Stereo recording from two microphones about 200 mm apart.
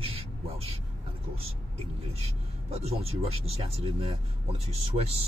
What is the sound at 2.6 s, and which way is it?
Speech, 30° right (ahead or behind).